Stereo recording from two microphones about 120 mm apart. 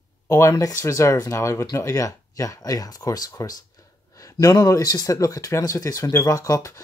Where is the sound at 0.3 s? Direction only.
25° left (ahead or behind).